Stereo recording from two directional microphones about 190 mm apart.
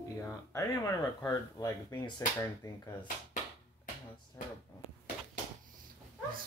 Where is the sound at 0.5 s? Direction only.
15° left (ahead or behind).